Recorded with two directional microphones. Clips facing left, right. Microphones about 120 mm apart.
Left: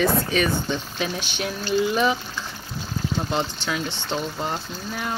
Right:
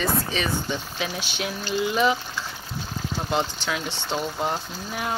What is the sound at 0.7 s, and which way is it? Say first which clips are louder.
Speech: left 2 dB; 10° right (ahead or behind).